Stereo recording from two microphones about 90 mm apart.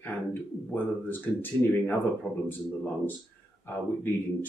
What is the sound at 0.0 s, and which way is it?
Speech, 20° left (ahead or behind).